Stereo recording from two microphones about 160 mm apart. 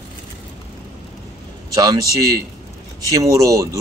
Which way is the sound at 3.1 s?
20° right (ahead or behind).